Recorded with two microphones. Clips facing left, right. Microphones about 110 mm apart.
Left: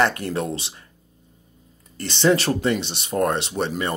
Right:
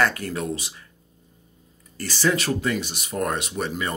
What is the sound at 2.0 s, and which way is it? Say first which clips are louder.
Speech: left 4 dB; 25° left (ahead or behind).